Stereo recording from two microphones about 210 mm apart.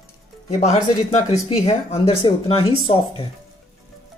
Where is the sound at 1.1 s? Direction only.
30° left (ahead or behind).